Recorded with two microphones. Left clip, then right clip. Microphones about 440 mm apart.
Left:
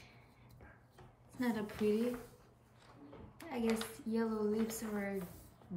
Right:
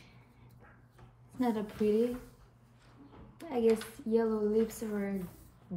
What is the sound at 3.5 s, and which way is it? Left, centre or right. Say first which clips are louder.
Speech: right 9 dB; centre.